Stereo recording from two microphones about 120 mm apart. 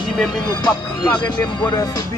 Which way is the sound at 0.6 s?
35° left (ahead or behind).